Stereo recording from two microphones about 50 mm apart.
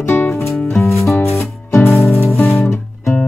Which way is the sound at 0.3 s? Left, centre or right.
Left.